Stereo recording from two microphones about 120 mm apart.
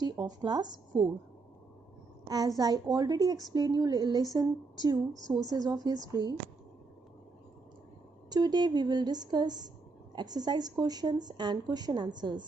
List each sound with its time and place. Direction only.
0.0 s a woman's voice: 35° right (ahead or behind)
2.2 s a woman's voice: 30° right (ahead or behind)
8.3 s a woman's voice: 35° right (ahead or behind)